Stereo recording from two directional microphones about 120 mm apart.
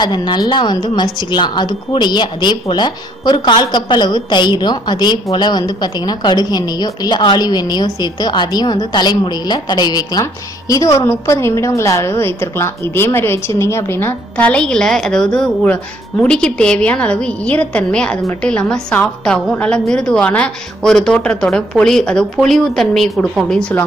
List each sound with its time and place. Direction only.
0.0 s a woman's voice: 40° left (ahead or behind); by 23.7 s centre (ahead or behind)